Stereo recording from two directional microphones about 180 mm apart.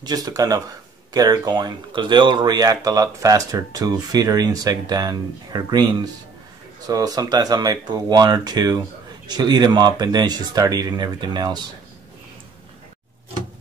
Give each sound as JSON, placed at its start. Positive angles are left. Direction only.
{"t": 0.0, "sound": "speech", "side_deg": -20}